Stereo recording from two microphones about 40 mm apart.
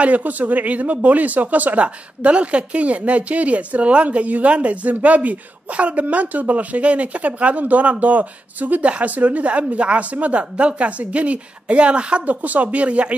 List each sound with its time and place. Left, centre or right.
0.0 s speech: right
12.3 s speech: right